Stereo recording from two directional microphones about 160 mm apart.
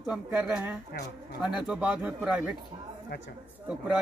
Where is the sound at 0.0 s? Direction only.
10° right (ahead or behind).